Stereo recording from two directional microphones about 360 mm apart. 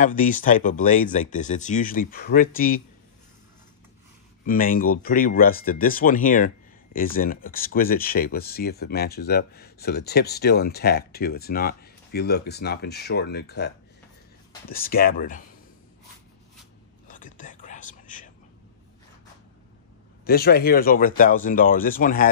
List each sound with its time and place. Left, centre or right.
0.0 s speech: left
4.5 s speech: left
17.1 s whispering: left
20.2 s speech: left